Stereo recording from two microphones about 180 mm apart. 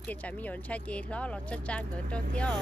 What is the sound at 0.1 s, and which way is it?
Speech, 10° left (ahead or behind).